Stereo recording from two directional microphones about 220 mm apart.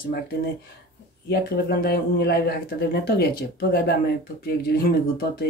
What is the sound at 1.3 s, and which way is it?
Speech, 45° left (ahead or behind).